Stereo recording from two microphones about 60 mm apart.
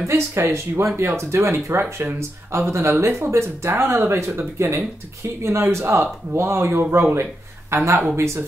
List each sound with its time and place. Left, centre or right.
0.1 s speech: right
7.7 s speech: right